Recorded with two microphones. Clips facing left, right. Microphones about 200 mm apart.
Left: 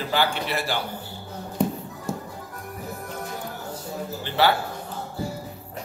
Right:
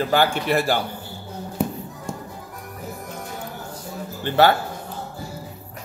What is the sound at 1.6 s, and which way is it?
Music, 5° right (ahead or behind).